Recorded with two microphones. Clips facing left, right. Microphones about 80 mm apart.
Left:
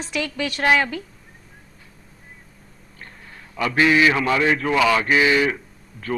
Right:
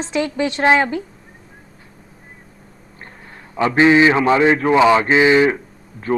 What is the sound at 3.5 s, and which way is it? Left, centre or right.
Mantra, right.